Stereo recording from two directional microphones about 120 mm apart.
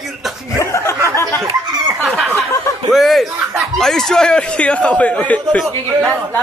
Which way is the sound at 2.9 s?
Centre (ahead or behind).